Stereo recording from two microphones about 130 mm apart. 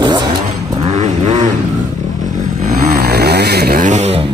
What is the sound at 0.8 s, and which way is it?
Vehicle, 60° right (ahead or behind).